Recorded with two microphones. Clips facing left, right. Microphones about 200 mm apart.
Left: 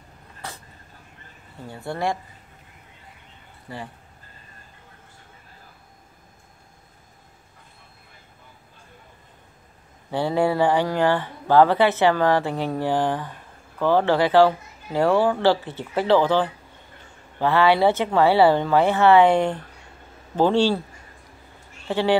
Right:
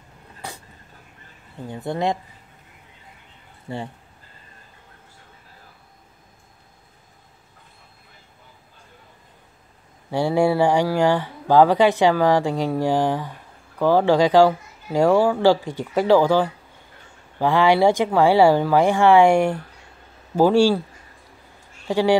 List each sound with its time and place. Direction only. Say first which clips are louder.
0.4 s a sound: right 2 dB; 15° right (ahead or behind)
1.7 s speech: right 3 dB; 20° right (ahead or behind)
3.6 s speech: right 5 dB; 25° right (ahead or behind)
10.1 s speech: right 2 dB; 10° right (ahead or behind)
21.8 s speech: right 3 dB; 10° right (ahead or behind)